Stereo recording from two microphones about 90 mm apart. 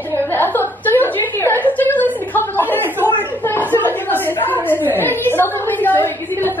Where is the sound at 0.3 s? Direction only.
25° left (ahead or behind).